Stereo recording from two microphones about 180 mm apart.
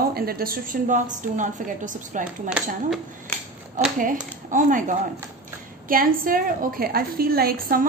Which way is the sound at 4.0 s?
45° right (ahead or behind).